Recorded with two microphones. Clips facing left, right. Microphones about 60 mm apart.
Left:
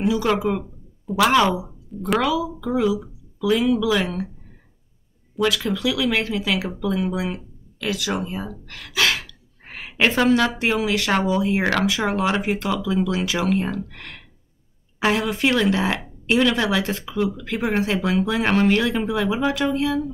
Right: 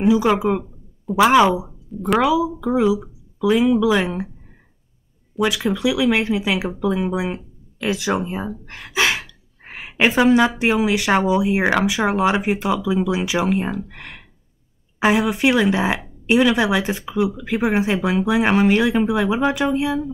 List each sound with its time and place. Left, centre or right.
0.0 s speech: centre
5.4 s speech: centre